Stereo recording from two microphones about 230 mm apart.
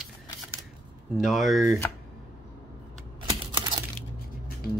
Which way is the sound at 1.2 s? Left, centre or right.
Centre.